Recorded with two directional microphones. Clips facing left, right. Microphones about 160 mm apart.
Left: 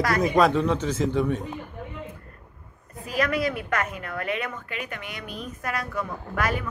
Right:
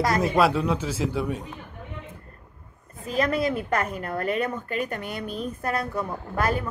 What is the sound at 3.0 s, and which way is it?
A woman's voice, 25° right (ahead or behind).